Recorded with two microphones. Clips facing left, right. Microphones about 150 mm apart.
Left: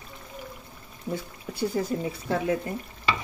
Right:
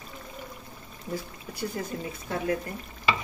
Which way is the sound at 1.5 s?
30° left (ahead or behind).